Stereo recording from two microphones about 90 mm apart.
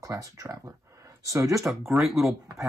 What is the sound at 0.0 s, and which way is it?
Speech, 35° right (ahead or behind).